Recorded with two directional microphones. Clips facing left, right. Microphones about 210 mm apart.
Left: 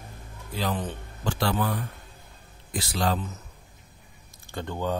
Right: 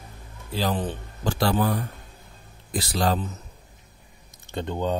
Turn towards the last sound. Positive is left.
turn(degrees=-20)  # may be behind; listen again after turning